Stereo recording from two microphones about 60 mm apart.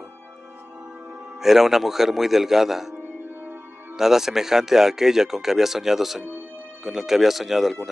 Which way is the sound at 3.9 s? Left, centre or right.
Centre.